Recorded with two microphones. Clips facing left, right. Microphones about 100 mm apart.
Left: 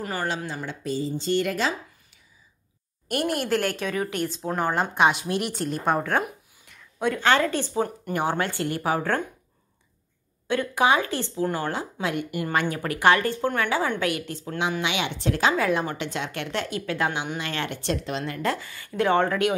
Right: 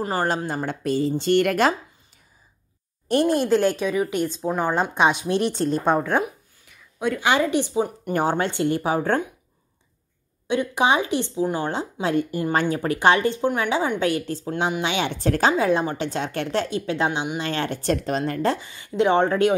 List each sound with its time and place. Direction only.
0.0 s speech: 35° right (ahead or behind); by 1.8 s 60° right (ahead or behind)
3.1 s speech: 25° right (ahead or behind)
5.9 s speech: 10° right (ahead or behind)
6.2 s a sound: centre (ahead or behind)
7.2 s speech: 15° right (ahead or behind)
8.1 s speech: 35° right (ahead or behind)
10.5 s a woman's voice: 20° right (ahead or behind); by 15.5 s 45° right (ahead or behind)
15.5 s a woman's voice: 25° right (ahead or behind)